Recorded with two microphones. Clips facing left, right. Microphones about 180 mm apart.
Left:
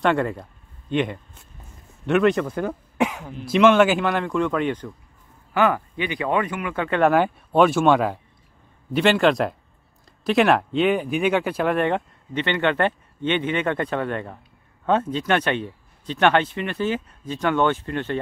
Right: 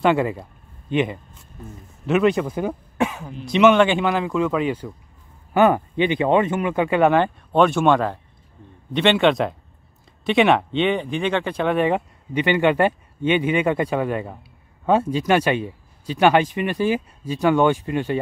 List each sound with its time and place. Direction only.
0.0 s speech: 5° right (ahead or behind)
5.5 s speech: 25° right (ahead or behind)
7.0 s speech: 5° left (ahead or behind)